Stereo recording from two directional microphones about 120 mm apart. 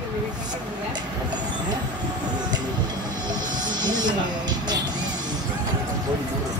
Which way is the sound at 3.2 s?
35° right (ahead or behind).